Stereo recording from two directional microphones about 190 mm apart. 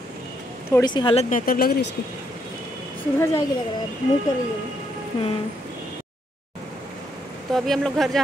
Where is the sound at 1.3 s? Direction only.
50° left (ahead or behind).